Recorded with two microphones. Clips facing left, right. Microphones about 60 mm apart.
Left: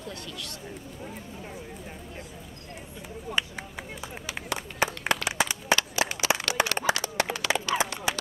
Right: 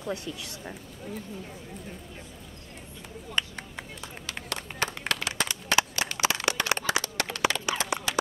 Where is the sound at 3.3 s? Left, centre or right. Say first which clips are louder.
Left 1 dB; centre.